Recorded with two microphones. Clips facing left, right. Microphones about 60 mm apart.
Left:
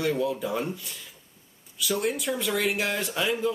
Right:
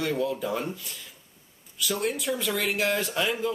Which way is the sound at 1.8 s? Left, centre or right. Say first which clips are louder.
Left 1 dB; centre.